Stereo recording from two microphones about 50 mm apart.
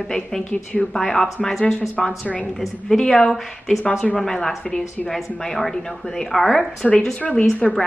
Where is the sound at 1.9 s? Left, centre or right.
Left.